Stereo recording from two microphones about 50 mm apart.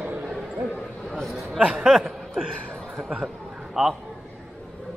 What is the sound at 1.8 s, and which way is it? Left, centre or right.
Speech, centre.